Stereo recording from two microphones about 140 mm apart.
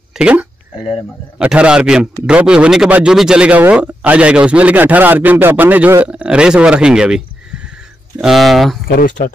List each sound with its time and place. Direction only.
0.1 s a sound: 5° right (ahead or behind)
1.4 s a man's voice: 5° right (ahead or behind)
8.8 s speech: 80° left